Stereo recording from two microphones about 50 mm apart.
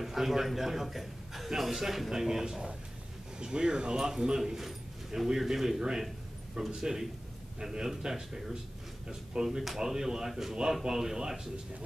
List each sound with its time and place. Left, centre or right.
0.0 s a man's voice: centre